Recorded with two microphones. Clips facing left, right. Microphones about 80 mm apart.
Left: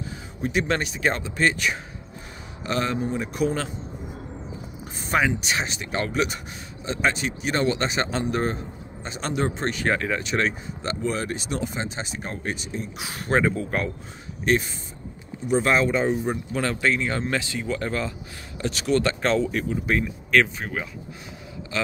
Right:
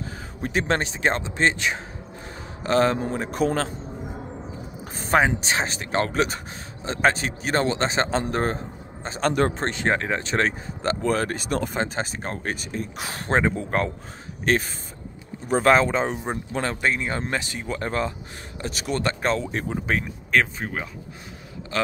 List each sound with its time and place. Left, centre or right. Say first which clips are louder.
0.0 s a man's voice: left 1 dB; right
4.9 s a man's voice: right 3 dB; right
9.3 s a man's voice: even; right
9.8 s speech: right 1 dB; right
13.3 s a man's voice: even; right
16.8 s speech: left 2 dB; right
19.2 s speech: left 2 dB; centre
19.5 s a man's voice: left 1 dB; right